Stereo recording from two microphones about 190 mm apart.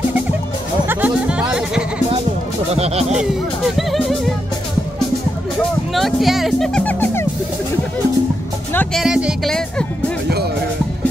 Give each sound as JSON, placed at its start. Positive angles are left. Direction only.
{"t": 0.8, "sound": "music", "side_deg": -5}
{"t": 2.7, "sound": "speech", "side_deg": -35}
{"t": 3.2, "sound": "speech", "side_deg": 0}
{"t": 5.9, "sound": "speech", "side_deg": 0}
{"t": 8.7, "sound": "speech", "side_deg": 0}